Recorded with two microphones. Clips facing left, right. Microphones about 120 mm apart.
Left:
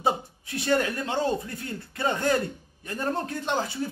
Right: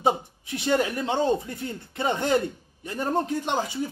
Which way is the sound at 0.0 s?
20° right (ahead or behind).